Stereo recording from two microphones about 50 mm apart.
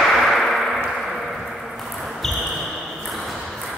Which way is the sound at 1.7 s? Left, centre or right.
Centre.